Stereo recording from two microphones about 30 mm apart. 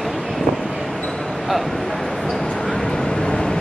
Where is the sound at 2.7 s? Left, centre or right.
Left.